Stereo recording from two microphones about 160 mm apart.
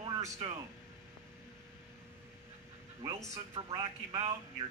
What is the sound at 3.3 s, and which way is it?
Speech, 40° right (ahead or behind).